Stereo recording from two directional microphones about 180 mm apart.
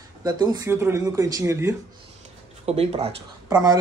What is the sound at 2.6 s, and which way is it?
Speech, 35° right (ahead or behind).